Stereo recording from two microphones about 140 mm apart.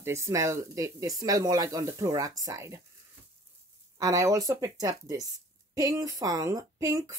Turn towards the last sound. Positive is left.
turn(degrees=-25)  # may be behind; listen again after turning